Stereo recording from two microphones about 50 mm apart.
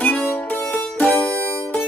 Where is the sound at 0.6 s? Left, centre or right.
Left.